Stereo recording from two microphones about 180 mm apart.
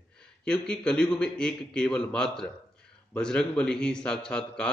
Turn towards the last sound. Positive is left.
turn(degrees=5)  # may be behind; listen again after turning